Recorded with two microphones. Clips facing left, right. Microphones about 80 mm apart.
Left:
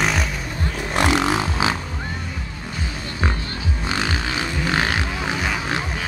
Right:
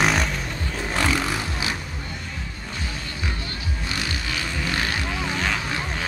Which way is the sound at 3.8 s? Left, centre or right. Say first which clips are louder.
Left 6 dB; left.